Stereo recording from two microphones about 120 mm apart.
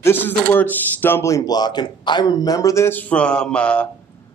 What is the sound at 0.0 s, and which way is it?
Speech, 15° left (ahead or behind).